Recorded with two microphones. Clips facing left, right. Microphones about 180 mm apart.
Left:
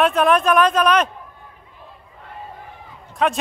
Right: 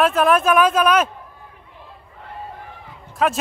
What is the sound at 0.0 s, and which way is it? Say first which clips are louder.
Speech: even; centre (ahead or behind).